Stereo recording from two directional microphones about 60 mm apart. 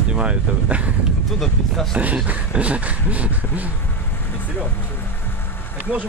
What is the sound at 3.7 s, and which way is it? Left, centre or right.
Vehicle, left.